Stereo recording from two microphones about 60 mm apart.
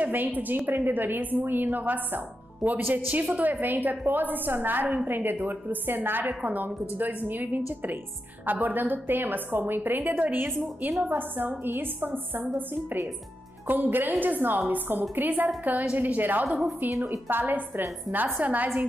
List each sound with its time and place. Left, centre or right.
0.0 s a woman's voice: right